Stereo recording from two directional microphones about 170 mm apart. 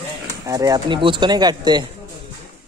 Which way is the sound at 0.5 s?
20° right (ahead or behind).